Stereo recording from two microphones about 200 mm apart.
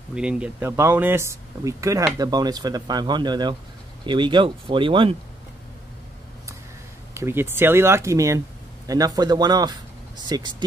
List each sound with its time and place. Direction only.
0.1 s speech: 5° right (ahead or behind); by 5.1 s 25° right (ahead or behind)
7.2 s speech: 10° right (ahead or behind)